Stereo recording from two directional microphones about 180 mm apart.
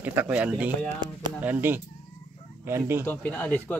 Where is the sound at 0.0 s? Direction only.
10° right (ahead or behind).